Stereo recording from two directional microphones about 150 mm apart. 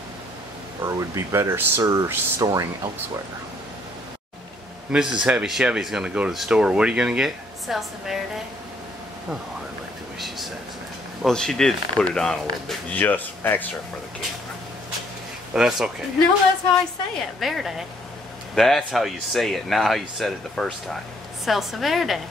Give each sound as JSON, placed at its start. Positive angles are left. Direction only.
{"t": 0.8, "sound": "speech", "side_deg": -20}
{"t": 4.9, "sound": "speech", "side_deg": -5}
{"t": 11.2, "sound": "speech", "side_deg": 5}
{"t": 15.5, "sound": "speech", "side_deg": -5}
{"t": 17.4, "sound": "speech", "side_deg": 0}